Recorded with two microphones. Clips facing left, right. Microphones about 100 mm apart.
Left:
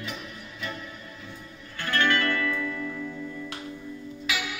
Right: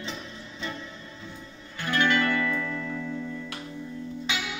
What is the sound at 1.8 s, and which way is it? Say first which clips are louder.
Music: right 1 dB; 15° right (ahead or behind).